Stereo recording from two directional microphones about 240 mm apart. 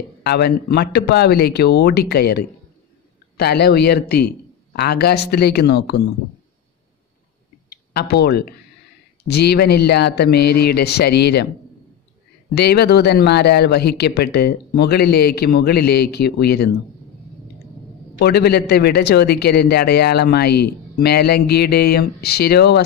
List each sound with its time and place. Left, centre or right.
0.2 s a man's voice: left
7.9 s a man's voice: left
12.5 s a man's voice: left
18.2 s a man's voice: left